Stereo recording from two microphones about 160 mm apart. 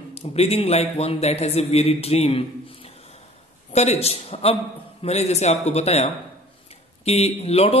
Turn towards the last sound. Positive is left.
turn(degrees=40)  # may be behind; listen again after turning